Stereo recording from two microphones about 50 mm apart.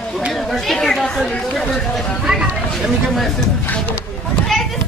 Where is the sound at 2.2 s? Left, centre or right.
Centre.